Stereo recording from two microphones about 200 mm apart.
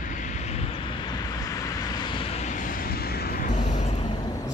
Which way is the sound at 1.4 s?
20° left (ahead or behind).